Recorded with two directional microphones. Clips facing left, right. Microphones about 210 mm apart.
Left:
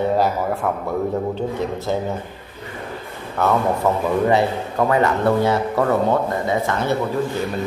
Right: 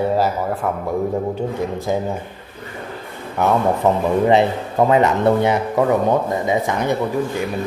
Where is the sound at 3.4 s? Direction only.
15° right (ahead or behind).